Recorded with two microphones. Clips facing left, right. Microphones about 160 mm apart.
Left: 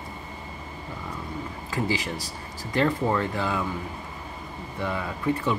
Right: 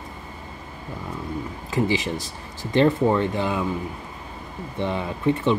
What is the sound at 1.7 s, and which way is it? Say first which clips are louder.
Speech: right 5 dB; 20° right (ahead or behind).